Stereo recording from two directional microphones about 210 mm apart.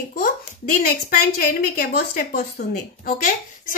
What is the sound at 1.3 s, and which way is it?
A woman's voice, 45° left (ahead or behind).